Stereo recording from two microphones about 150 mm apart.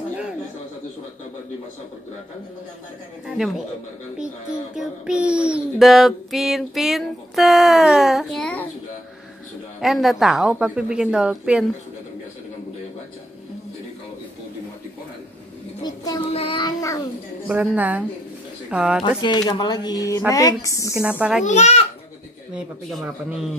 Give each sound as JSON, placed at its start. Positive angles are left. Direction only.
{"t": 3.3, "sound": "child singing", "side_deg": 0}
{"t": 9.8, "sound": "child singing", "side_deg": 0}
{"t": 15.8, "sound": "a sound", "side_deg": 25}
{"t": 16.3, "sound": "a sound", "side_deg": 35}
{"t": 17.5, "sound": "a woman's voice", "side_deg": -10}
{"t": 19.2, "sound": "speech", "side_deg": 30}
{"t": 21.2, "sound": "child singing", "side_deg": -5}
{"t": 21.5, "sound": "a child's voice", "side_deg": 50}
{"t": 22.5, "sound": "child singing", "side_deg": 0}